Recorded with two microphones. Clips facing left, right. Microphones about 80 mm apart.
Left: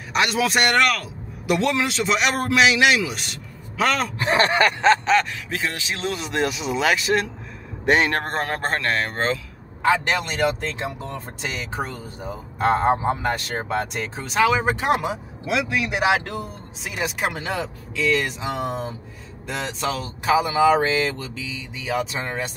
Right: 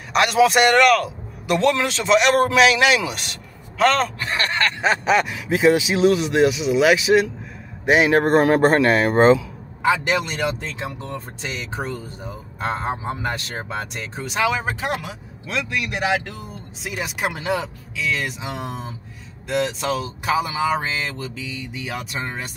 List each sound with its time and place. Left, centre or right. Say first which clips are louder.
0.1 s speech: right 5 dB; centre
4.2 s speech: left 5 dB; left
4.8 s speech: right 1 dB; centre
10.0 s speech: even; centre
14.9 s speech: left 6 dB; left
15.4 s speech: left 2 dB; centre